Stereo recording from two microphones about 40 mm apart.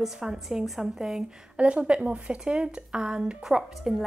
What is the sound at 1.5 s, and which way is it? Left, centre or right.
Speech, right.